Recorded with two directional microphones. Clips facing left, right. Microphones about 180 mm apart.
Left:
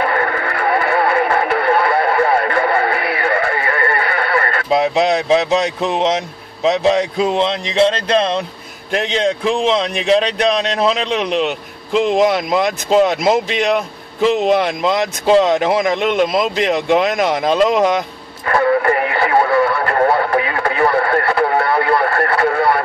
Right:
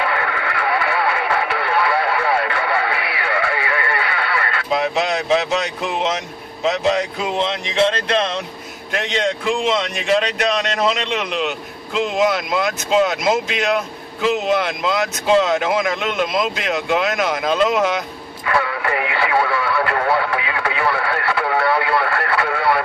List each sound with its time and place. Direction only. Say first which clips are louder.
0.0 s radio: left 4 dB; 45° left (ahead or behind)
4.6 s a man's voice: left 5 dB; 35° left (ahead or behind)
9.5 s a man's voice: left 2 dB; 30° left (ahead or behind)
12.4 s speech: left 4 dB; 30° left (ahead or behind)
14.8 s a man's voice: left 3 dB; 30° left (ahead or behind)
18.4 s radio: left 7 dB; 45° left (ahead or behind)